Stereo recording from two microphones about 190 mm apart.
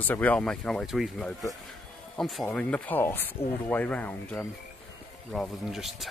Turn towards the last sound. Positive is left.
turn(degrees=0)  # may be behind; listen again after turning